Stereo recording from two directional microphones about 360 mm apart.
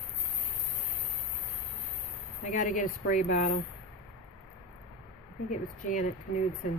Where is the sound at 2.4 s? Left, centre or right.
Left.